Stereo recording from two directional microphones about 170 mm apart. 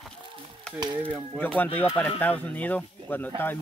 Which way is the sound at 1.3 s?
5° left (ahead or behind).